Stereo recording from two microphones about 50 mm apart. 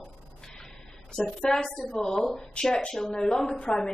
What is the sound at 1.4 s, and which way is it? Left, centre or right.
A woman's voice, centre.